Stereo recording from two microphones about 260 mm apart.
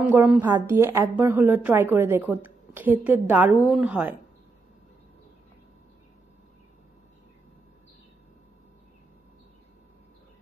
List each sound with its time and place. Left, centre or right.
0.1 s a woman's voice: centre